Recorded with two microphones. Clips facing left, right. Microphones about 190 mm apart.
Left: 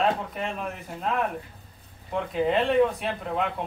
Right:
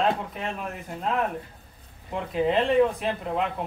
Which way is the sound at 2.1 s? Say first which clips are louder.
Even; centre (ahead or behind).